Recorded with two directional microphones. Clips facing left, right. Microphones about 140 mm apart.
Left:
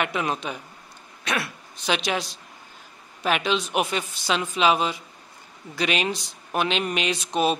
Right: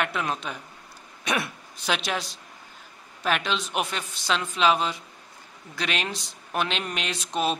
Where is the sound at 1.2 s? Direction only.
15° right (ahead or behind).